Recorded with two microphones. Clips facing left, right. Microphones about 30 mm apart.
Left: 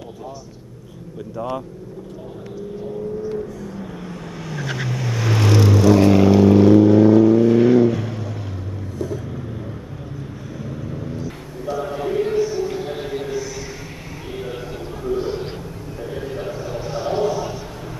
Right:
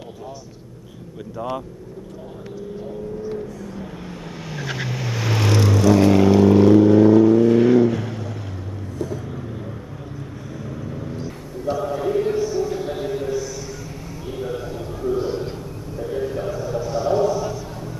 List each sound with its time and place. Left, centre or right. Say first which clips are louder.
1.3 s speech: left 1 dB; centre
3.3 s vehicle: left 2 dB; centre
17.2 s a sound: right 1 dB; left